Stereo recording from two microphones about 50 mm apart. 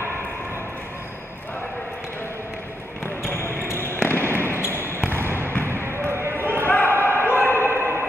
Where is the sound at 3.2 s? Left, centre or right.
Left.